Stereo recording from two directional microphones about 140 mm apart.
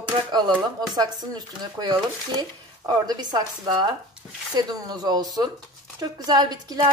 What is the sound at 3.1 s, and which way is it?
A woman's voice, 30° right (ahead or behind).